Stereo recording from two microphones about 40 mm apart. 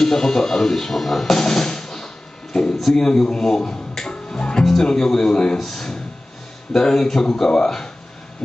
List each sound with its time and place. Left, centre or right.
0.0 s speech: centre
2.9 s speech: centre